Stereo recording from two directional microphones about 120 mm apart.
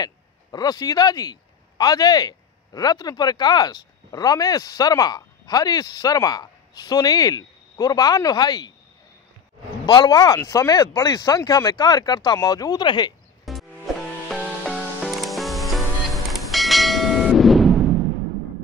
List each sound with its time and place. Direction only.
0.0 s speech: 35° left (ahead or behind)
9.8 s speech: 35° left (ahead or behind)
13.5 s music: centre (ahead or behind)
14.7 s music: centre (ahead or behind)
16.3 s bell: centre (ahead or behind)